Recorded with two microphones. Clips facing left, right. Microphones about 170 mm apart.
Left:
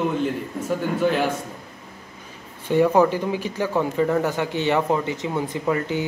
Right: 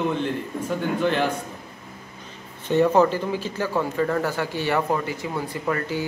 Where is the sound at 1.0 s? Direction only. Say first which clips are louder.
Left 2 dB; 5° left (ahead or behind).